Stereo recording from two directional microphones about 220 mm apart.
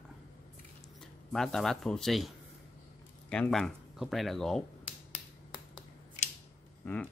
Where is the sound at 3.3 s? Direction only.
5° left (ahead or behind).